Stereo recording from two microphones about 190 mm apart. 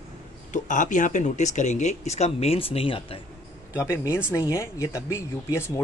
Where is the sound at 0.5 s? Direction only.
40° left (ahead or behind).